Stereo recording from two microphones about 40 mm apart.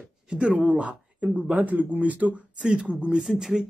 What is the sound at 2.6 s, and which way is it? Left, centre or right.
Speech, right.